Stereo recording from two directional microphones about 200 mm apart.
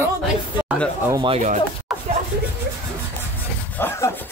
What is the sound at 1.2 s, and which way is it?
Speech, 30° right (ahead or behind).